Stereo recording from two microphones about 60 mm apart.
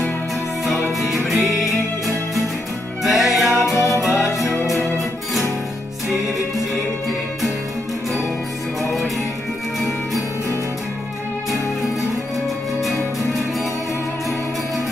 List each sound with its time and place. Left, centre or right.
1.0 s music: centre
3.7 s music: left
4.0 s music: centre